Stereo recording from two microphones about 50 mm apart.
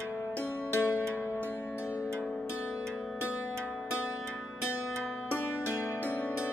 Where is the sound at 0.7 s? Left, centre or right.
Left.